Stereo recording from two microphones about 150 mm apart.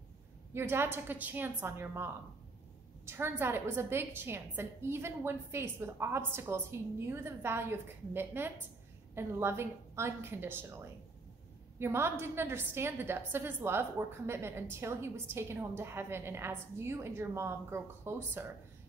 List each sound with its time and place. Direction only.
0.6 s a woman's voice: 15° right (ahead or behind)
3.1 s a woman's voice: 15° right (ahead or behind)